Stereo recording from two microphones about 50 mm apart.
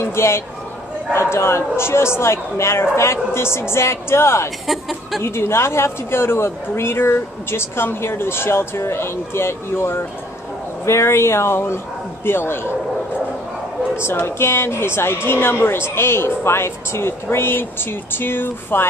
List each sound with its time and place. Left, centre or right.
0.0 s speech: left
4.6 s speech: centre
5.2 s speech: left
10.9 s speech: left
13.9 s speech: left